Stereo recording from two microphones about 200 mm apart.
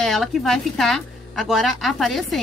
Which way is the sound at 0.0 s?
Centre (ahead or behind).